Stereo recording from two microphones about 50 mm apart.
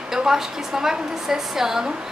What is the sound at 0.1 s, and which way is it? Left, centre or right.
A woman's voice, centre.